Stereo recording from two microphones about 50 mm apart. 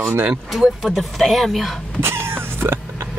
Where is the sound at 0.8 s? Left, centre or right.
Centre.